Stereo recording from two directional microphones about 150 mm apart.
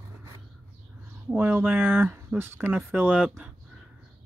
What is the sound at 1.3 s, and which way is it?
Speech, 10° right (ahead or behind).